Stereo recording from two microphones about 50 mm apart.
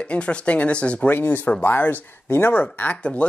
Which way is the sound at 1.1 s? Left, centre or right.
Left.